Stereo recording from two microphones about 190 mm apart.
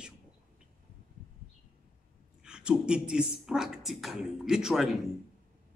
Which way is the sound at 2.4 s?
5° right (ahead or behind).